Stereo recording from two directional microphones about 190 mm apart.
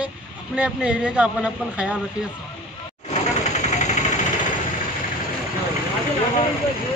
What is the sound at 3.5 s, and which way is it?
Vehicle, 40° left (ahead or behind).